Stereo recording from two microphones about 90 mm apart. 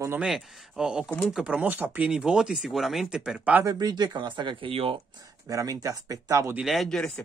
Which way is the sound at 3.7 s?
50° right (ahead or behind).